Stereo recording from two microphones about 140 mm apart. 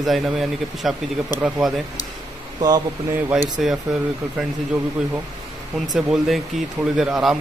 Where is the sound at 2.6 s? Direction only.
30° right (ahead or behind).